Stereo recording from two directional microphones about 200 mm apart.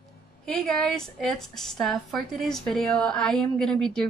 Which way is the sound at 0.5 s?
Centre (ahead or behind).